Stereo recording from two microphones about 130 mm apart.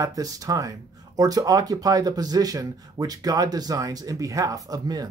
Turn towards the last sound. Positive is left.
turn(degrees=-30)  # may be behind; listen again after turning